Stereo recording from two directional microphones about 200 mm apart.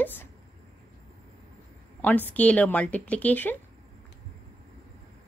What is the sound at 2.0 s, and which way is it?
Speech, 10° left (ahead or behind).